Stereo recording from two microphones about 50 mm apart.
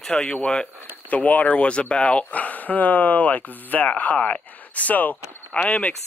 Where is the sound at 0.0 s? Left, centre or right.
Centre.